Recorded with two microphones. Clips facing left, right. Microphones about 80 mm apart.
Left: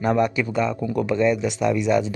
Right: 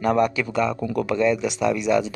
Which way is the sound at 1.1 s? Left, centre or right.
Centre.